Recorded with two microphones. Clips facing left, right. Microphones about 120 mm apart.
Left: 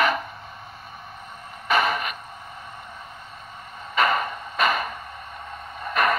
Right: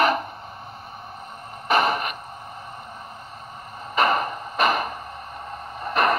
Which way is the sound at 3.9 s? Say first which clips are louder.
Right 1 dB; 40° right (ahead or behind).